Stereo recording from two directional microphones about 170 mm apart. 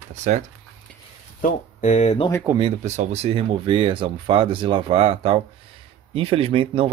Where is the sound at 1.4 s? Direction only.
45° left (ahead or behind).